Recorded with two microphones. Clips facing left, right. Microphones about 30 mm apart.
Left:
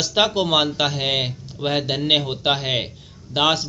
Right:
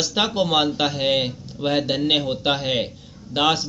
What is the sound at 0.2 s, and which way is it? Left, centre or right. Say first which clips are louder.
Speech: left 2 dB; left.